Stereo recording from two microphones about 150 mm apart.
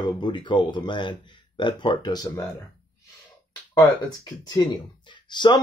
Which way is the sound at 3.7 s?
25° left (ahead or behind).